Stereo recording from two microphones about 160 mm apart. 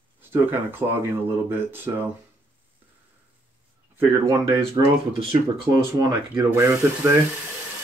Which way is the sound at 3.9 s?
20° right (ahead or behind).